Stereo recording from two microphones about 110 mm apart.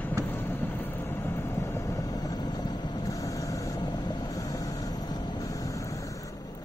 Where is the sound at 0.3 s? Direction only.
20° left (ahead or behind).